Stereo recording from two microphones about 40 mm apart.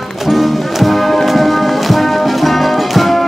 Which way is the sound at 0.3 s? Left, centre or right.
Centre.